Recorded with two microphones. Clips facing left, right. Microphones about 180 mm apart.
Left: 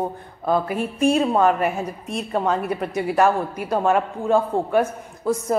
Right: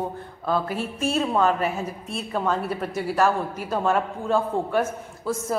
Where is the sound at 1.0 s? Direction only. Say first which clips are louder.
Left 5 dB; 15° left (ahead or behind).